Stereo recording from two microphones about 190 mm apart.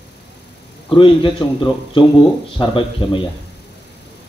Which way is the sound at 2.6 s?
25° left (ahead or behind).